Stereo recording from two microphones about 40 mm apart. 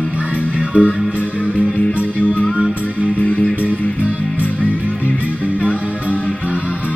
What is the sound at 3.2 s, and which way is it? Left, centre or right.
Music, left.